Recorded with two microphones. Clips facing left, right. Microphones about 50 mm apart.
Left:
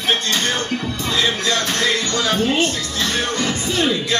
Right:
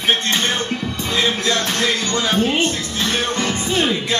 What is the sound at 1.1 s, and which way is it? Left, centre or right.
Speech, right.